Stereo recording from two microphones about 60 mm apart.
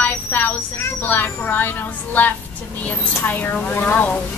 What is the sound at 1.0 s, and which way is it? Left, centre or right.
Speech, left.